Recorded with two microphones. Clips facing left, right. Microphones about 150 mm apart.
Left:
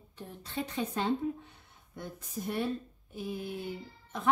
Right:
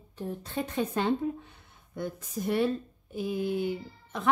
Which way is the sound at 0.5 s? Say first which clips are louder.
Right 3 dB; 60° right (ahead or behind).